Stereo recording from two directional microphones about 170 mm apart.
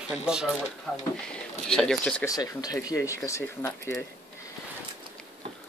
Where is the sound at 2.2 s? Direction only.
20° left (ahead or behind).